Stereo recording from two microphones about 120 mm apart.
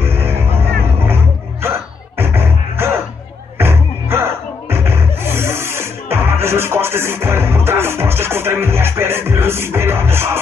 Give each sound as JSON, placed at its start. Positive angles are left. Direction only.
{"t": 0.0, "sound": "music", "side_deg": -20}